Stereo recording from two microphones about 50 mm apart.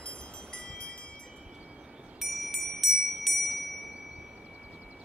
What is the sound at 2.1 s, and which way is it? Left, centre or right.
Wind chime, centre.